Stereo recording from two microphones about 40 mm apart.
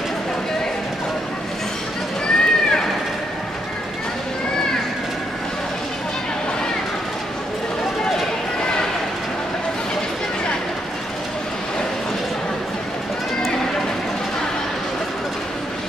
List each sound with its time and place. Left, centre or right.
2.2 s run: left